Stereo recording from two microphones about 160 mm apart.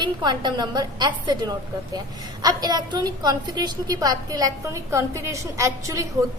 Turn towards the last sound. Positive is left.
turn(degrees=-20)  # may be behind; listen again after turning